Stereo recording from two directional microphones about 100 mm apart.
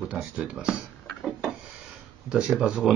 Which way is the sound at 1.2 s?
5° right (ahead or behind).